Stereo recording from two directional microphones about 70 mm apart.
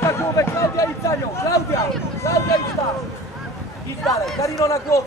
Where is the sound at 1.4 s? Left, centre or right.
Left.